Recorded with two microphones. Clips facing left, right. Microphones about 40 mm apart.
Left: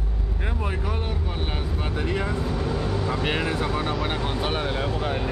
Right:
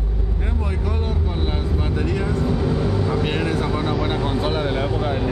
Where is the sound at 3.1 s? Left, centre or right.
Centre.